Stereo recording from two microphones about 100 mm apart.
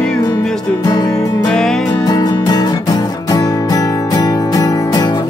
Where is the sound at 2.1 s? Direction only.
45° left (ahead or behind).